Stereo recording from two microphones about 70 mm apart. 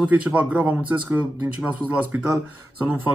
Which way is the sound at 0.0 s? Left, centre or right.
Centre.